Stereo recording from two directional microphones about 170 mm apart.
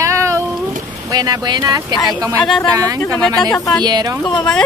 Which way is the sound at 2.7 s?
20° right (ahead or behind).